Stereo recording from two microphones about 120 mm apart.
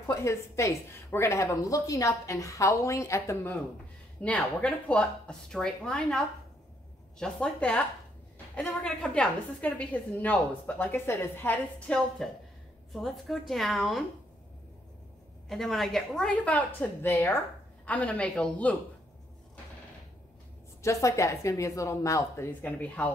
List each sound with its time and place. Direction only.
0.0 s a woman's voice: 25° left (ahead or behind)
4.2 s a woman's voice: 10° left (ahead or behind)
12.2 s a woman's voice: 5° left (ahead or behind)
15.4 s a woman's voice: centre (ahead or behind)
20.8 s a woman's voice: 25° left (ahead or behind)